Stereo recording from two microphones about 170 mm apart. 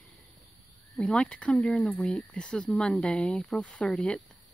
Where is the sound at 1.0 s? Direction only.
5° left (ahead or behind).